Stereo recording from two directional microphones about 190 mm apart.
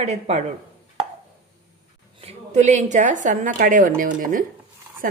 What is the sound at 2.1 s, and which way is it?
A woman's voice, 35° right (ahead or behind).